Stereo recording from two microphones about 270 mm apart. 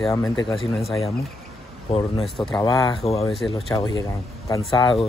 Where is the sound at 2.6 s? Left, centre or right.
Centre.